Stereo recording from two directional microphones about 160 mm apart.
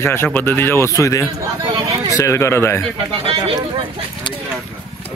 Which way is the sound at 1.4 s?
20° right (ahead or behind).